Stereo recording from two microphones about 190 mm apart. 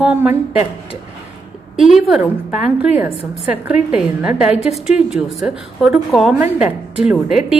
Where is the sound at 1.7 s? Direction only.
Centre (ahead or behind).